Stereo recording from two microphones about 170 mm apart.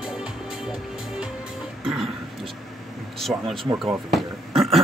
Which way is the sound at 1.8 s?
Centre (ahead or behind).